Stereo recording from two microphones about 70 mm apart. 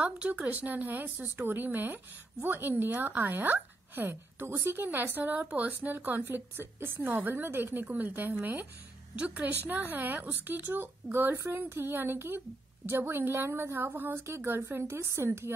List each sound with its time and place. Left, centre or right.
0.0 s a woman's voice: centre
7.8 s a woman's voice: right